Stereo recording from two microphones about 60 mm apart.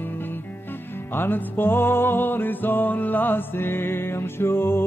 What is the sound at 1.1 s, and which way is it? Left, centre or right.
Music, left.